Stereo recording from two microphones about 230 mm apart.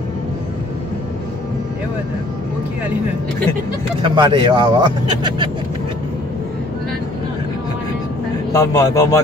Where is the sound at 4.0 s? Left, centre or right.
Centre.